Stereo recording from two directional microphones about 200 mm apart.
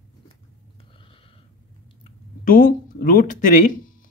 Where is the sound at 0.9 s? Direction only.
25° left (ahead or behind).